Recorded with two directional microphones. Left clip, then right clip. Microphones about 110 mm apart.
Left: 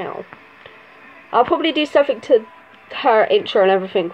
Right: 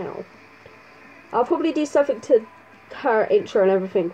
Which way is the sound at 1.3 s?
15° right (ahead or behind).